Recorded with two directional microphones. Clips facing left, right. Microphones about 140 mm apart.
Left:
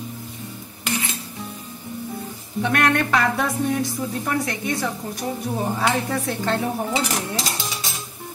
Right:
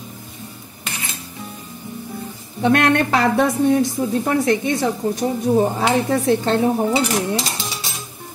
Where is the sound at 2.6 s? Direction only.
30° right (ahead or behind).